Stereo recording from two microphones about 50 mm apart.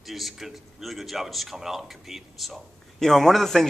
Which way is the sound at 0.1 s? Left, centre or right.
Centre.